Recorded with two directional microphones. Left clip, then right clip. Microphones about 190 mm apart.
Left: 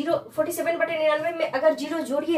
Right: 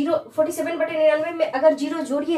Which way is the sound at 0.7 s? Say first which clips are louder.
Right 5 dB; 5° right (ahead or behind).